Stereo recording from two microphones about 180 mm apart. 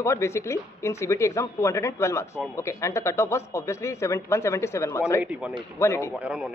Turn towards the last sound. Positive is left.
turn(degrees=-5)  # may be behind; listen again after turning